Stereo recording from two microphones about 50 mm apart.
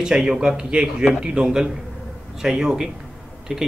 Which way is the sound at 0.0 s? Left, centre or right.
Centre.